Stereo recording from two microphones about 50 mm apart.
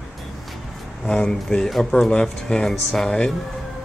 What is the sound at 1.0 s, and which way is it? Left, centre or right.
Speech, centre.